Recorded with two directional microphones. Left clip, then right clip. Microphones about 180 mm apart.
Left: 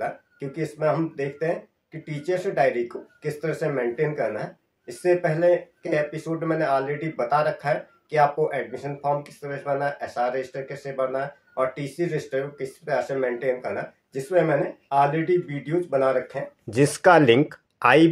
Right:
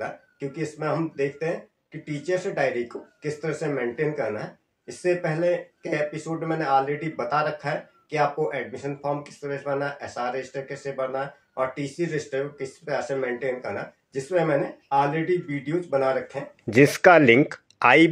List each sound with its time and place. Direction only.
0.0 s speech: 25° left (ahead or behind)
16.7 s speech: 20° right (ahead or behind)